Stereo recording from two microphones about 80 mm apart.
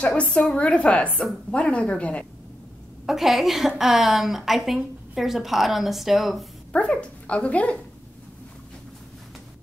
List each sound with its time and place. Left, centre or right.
0.0 s a woman's voice: centre
3.1 s a woman's voice: centre
6.7 s a woman's voice: centre